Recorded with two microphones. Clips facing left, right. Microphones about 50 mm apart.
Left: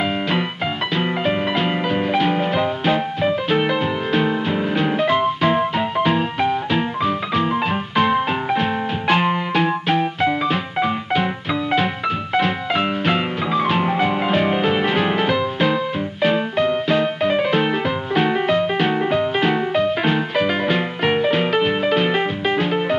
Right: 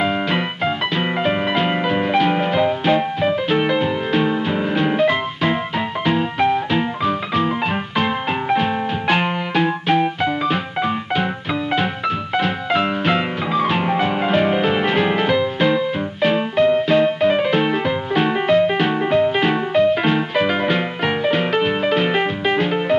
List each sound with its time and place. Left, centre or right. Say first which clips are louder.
0.9 s music: right 1 dB; centre
12.4 s music: even; centre
21.0 s music: left 3 dB; centre